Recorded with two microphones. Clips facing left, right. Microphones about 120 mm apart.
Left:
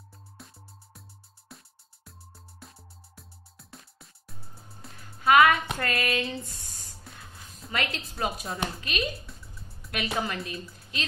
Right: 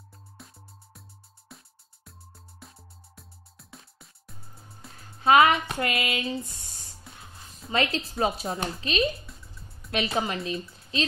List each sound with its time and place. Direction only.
0.1 s music: centre (ahead or behind)
5.0 s music: 30° right (ahead or behind)
5.8 s a sound: 20° right (ahead or behind)
6.3 s speech: 15° right (ahead or behind)
7.7 s a woman's voice: 30° right (ahead or behind)
9.2 s music: centre (ahead or behind)
9.8 s a woman's voice: 25° right (ahead or behind)